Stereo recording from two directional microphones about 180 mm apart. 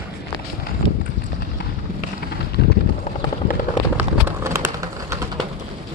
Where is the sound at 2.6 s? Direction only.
60° left (ahead or behind).